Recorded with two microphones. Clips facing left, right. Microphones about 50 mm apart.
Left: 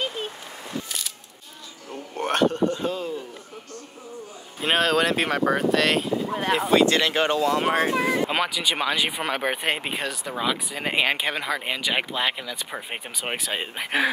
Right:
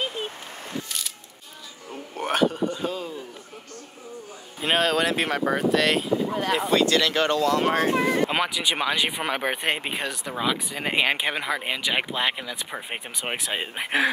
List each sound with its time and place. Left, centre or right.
1.9 s a sound: centre
4.6 s speech: centre
6.8 s speech: left
8.3 s speech: centre